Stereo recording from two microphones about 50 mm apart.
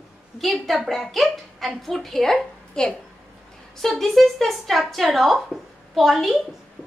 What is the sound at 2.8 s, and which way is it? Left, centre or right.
Speech, centre.